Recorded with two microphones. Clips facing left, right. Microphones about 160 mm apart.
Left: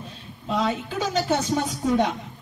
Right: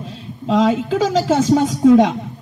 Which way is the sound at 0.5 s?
90° right.